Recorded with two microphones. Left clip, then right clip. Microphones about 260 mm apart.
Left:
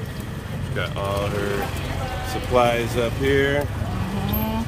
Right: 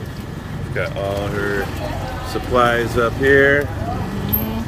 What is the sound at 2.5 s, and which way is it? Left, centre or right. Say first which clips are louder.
Speech: right 3 dB; centre.